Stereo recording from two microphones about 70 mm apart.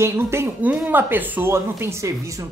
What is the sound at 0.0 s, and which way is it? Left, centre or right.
Speech, right.